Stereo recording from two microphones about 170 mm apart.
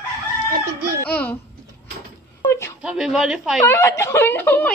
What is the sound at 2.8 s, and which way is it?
Speech, 5° right (ahead or behind).